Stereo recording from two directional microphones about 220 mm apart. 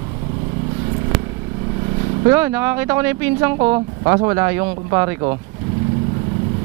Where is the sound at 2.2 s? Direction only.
10° right (ahead or behind).